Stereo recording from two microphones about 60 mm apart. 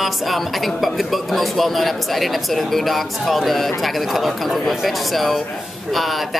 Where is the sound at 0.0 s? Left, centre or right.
Centre.